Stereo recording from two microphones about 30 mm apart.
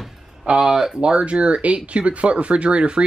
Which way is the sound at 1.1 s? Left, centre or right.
Right.